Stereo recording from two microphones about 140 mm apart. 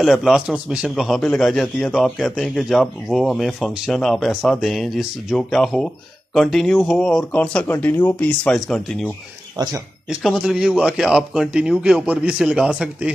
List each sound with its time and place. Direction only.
0.0 s a man's voice: centre (ahead or behind)
9.6 s speech: 30° right (ahead or behind)
10.0 s a man's voice: 5° right (ahead or behind)